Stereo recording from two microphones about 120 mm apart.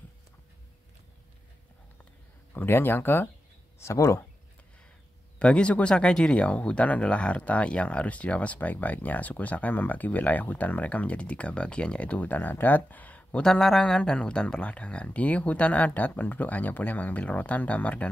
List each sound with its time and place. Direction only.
2.5 s speech: 15° left (ahead or behind)
5.4 s speech: 10° left (ahead or behind)